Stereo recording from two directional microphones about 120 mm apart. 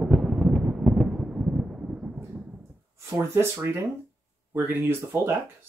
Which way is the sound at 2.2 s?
10° right (ahead or behind).